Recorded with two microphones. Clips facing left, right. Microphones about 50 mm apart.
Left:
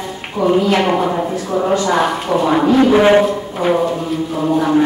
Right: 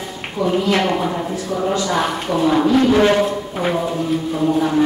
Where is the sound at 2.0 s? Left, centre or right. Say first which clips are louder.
Left 2 dB; centre.